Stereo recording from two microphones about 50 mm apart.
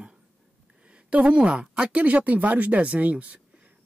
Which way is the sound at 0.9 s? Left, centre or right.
Right.